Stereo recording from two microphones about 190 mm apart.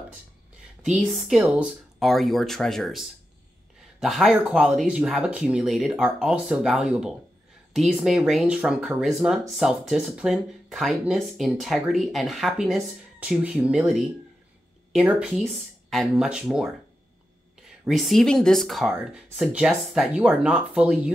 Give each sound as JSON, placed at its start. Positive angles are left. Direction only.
{"t": 0.8, "sound": "speech", "side_deg": 0}
{"t": 17.8, "sound": "speech", "side_deg": 0}